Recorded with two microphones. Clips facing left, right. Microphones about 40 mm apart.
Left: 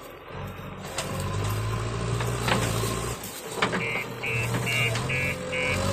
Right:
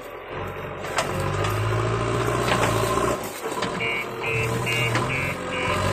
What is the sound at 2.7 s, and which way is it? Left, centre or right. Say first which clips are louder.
Roaring cats: right 7 dB; right.